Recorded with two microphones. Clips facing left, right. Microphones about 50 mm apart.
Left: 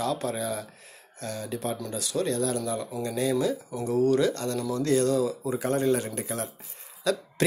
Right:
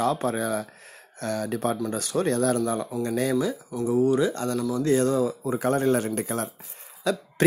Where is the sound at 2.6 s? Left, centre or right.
Right.